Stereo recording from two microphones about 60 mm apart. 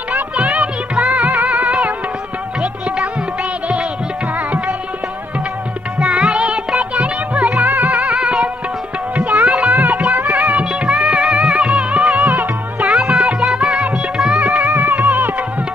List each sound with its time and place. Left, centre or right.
0.1 s music: centre
5.9 s music: centre; by 8.0 s right
8.0 s music: centre
9.5 s music: centre
9.8 s music: right
14.6 s music: right